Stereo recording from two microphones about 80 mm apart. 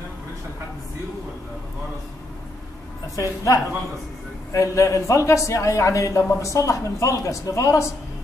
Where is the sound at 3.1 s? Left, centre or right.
Left.